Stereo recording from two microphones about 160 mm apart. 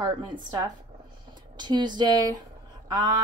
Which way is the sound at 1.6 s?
30° right (ahead or behind).